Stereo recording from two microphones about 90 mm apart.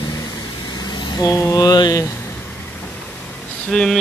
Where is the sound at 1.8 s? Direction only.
40° left (ahead or behind).